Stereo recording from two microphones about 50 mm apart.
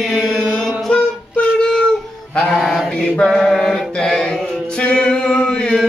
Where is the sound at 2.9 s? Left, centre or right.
Centre.